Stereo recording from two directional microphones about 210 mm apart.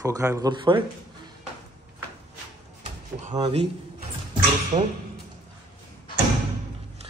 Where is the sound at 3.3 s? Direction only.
20° right (ahead or behind).